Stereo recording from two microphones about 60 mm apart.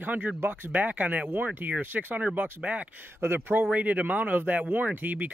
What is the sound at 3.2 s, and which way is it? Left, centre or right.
Speech, right.